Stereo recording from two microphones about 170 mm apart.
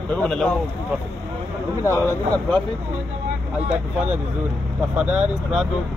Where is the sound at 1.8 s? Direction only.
15° left (ahead or behind).